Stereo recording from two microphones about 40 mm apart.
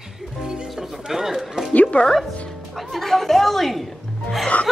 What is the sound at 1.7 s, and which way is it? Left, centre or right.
Speech, left.